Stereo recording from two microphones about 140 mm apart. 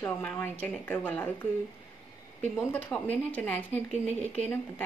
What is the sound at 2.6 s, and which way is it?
Speech, 15° left (ahead or behind).